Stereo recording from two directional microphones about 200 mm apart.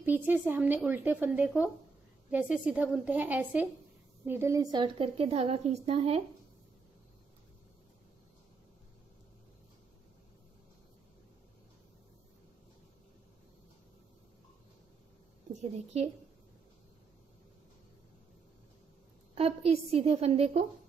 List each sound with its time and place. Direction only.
0.0 s a woman's voice: 10° right (ahead or behind); by 6.2 s 30° right (ahead or behind)
15.5 s a woman's voice: 35° right (ahead or behind)
19.3 s a woman's voice: 30° right (ahead or behind)